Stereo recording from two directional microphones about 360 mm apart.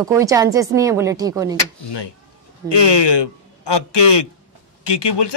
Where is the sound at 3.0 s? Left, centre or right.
Left.